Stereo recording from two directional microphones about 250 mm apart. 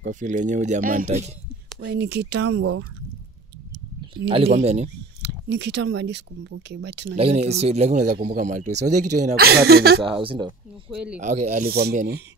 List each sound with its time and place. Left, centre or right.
0.0 s speech: right
1.9 s speech: right
4.3 s speech: right
5.2 s speech: right
7.6 s speech: right
10.0 s speech: right